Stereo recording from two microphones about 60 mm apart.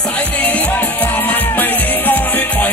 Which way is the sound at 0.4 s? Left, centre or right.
Left.